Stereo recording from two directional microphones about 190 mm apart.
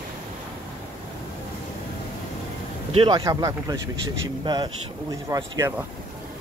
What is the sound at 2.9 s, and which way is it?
Speech, 25° right (ahead or behind).